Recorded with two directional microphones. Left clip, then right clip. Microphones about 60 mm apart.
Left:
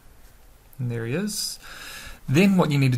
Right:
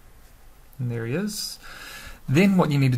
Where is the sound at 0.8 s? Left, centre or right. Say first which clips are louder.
Even; centre.